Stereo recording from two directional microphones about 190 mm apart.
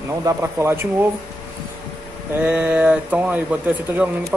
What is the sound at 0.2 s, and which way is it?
Speech, 15° right (ahead or behind).